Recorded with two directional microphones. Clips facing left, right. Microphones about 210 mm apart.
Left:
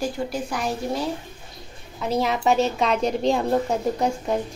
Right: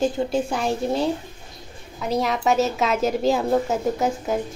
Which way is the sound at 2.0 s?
Centre (ahead or behind).